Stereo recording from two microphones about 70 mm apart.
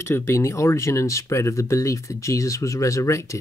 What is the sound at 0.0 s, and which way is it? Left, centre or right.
Speech, left.